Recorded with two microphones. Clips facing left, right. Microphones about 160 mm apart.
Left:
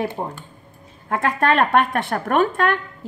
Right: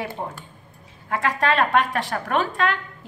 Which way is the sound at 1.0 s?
50° left (ahead or behind).